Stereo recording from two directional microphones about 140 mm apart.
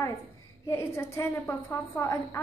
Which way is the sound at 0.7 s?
20° left (ahead or behind).